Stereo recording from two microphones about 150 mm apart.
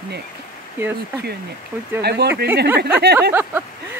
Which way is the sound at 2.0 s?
90° right.